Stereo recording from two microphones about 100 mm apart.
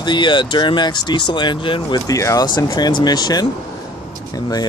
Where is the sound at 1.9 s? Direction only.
35° left (ahead or behind).